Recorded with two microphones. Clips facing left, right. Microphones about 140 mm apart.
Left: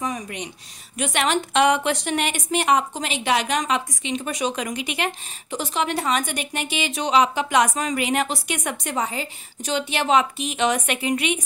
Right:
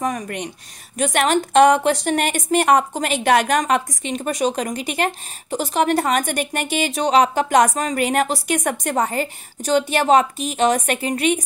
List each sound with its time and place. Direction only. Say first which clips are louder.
0.0 s a woman's voice: right 4 dB; 55° right (ahead or behind)
0.9 s a woman's voice: right 4 dB; 45° right (ahead or behind)